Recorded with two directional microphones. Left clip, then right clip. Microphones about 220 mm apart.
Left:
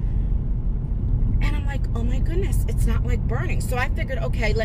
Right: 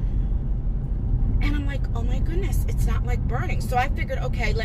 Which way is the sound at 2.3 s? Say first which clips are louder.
Left 3 dB; 15° left (ahead or behind).